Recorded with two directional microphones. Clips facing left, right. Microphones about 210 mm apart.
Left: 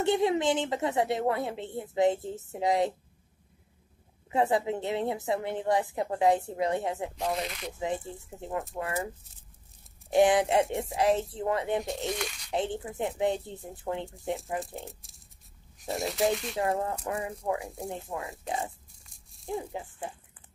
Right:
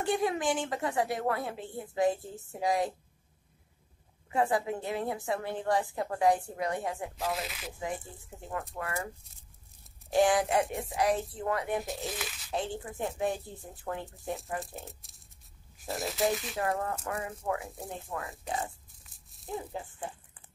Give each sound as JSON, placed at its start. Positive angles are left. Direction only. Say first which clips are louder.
{"t": 0.0, "sound": "a woman's voice", "louder": "left 4 dB", "side_deg": 25}
{"t": 4.3, "sound": "a woman's voice", "louder": "left 2 dB", "side_deg": 25}
{"t": 7.2, "sound": "speech", "louder": "left 3 dB", "side_deg": 0}
{"t": 7.8, "sound": "a woman's voice", "louder": "left 5 dB", "side_deg": 20}
{"t": 11.8, "sound": "speech", "louder": "left 4 dB", "side_deg": 0}
{"t": 12.5, "sound": "a woman's voice", "louder": "left 4 dB", "side_deg": 20}
{"t": 14.8, "sound": "speech", "louder": "left 3 dB", "side_deg": 0}
{"t": 16.5, "sound": "a woman's voice", "louder": "left 3 dB", "side_deg": 25}
{"t": 19.0, "sound": "rattle", "louder": "left 5 dB", "side_deg": 0}
{"t": 19.7, "sound": "speech", "louder": "left 1 dB", "side_deg": 15}